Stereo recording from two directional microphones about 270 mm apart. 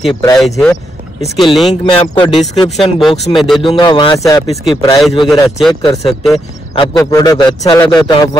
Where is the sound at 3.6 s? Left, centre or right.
Centre.